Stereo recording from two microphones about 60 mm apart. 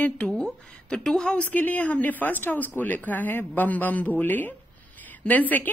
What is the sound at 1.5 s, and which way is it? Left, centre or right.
Speech, left.